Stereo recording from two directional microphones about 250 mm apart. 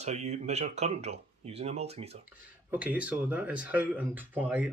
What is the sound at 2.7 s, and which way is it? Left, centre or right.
Speech, centre.